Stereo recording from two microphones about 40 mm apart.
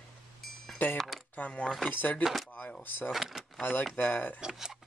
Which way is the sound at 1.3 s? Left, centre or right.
Left.